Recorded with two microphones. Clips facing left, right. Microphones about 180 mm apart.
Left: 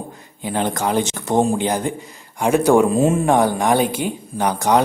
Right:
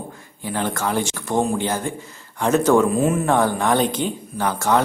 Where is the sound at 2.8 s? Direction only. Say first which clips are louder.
Left 3 dB; 25° left (ahead or behind).